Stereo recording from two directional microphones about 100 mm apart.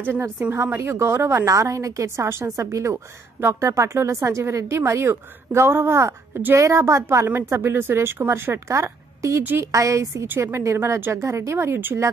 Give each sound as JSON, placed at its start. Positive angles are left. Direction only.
{"t": 0.0, "sound": "a woman's voice", "side_deg": -20}